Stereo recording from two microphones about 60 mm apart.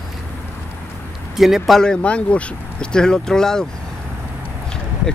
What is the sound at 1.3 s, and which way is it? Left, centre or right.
Speech, centre.